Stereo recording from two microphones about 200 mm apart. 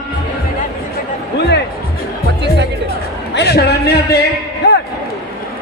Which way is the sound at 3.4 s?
55° left (ahead or behind).